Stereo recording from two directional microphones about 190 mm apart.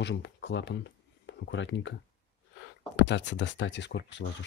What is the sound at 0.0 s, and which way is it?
Speech, 70° left (ahead or behind).